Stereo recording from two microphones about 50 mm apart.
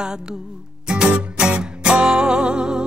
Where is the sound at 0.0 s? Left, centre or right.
Centre.